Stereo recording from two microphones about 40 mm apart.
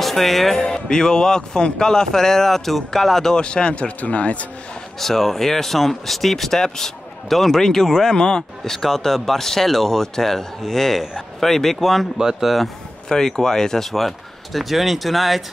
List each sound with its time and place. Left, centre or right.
0.0 s speech: centre
0.6 s speech: centre
3.3 s speech: left
5.0 s speech: centre
12.2 s speech: centre
13.1 s speech: centre
13.9 s speech: centre